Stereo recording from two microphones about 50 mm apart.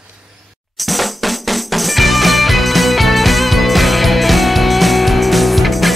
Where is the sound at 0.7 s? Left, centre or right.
Centre.